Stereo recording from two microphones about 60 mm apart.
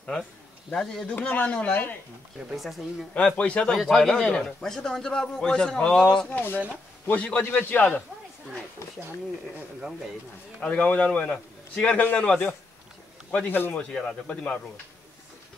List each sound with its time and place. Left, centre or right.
0.7 s speech: centre
1.1 s a man's voice: left
2.5 s speech: centre
3.2 s a man's voice: left
3.7 s a man's voice: centre
6.3 s a man's voice: left
10.6 s a man's voice: left
13.5 s a man's voice: left
13.7 s a man's voice: centre